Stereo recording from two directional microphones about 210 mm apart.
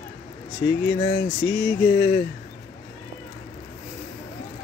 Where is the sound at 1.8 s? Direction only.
30° left (ahead or behind).